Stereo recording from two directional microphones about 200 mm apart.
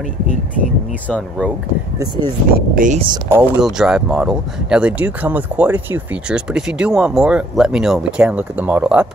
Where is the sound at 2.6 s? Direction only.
45° right (ahead or behind).